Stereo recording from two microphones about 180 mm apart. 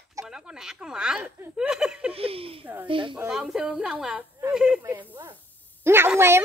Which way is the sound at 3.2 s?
Centre (ahead or behind).